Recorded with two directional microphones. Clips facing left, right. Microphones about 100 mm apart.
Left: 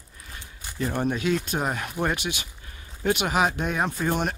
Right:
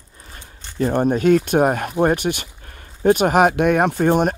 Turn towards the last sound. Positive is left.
turn(degrees=-50)  # may be behind; listen again after turning